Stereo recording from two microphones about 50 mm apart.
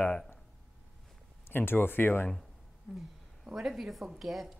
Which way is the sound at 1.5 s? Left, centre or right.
Left.